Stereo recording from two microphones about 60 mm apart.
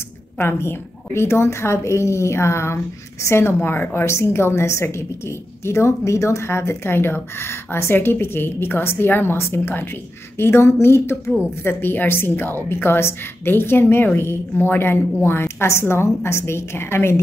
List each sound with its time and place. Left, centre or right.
0.4 s a woman's voice: left
4.0 s a woman's voice: left